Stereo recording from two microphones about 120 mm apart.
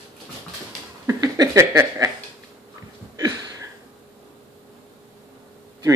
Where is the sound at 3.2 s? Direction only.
30° right (ahead or behind).